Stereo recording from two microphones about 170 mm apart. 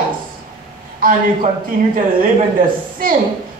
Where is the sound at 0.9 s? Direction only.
55° right (ahead or behind).